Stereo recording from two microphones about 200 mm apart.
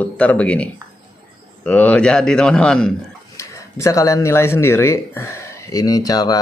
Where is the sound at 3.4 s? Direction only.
15° left (ahead or behind).